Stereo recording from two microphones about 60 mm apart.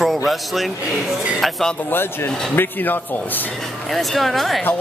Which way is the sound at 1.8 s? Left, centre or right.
Left.